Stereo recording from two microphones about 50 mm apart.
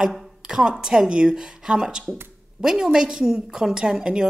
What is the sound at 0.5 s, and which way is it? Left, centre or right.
A woman's voice, centre.